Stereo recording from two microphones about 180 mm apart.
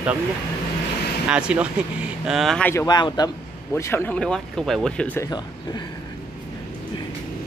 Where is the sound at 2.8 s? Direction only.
25° left (ahead or behind).